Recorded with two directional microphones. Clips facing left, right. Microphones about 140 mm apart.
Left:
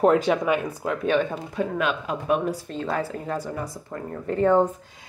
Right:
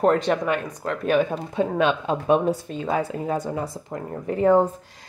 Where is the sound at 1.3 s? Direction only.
25° right (ahead or behind).